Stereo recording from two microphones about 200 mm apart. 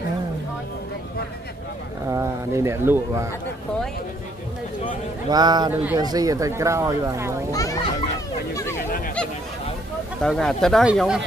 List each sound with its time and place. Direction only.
2.0 s speech: 15° right (ahead or behind)
5.3 s speech: 20° right (ahead or behind)
5.7 s speech: 10° right (ahead or behind)
5.9 s speech: 20° right (ahead or behind)
7.5 s a sound: 15° left (ahead or behind)
10.2 s speech: centre (ahead or behind)